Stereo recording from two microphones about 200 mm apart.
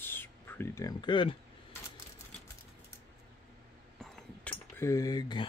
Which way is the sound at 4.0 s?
5° left (ahead or behind).